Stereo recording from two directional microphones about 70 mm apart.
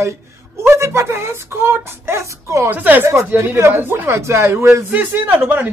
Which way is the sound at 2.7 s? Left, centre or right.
Right.